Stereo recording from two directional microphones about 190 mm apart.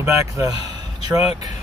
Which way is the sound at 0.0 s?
15° right (ahead or behind).